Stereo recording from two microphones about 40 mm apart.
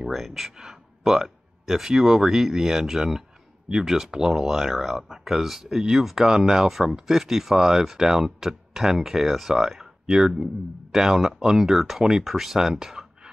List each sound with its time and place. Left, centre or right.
0.1 s speech: centre